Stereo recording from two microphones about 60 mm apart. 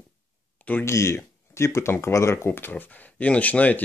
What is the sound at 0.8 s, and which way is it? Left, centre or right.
Speech, left.